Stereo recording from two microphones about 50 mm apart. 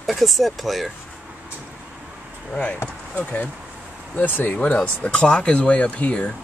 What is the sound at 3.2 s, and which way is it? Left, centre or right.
Speech, left.